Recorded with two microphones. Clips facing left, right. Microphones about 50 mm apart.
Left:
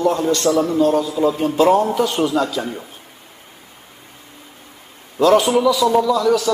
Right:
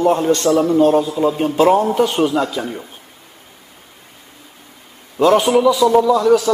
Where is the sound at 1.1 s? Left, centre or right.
Right.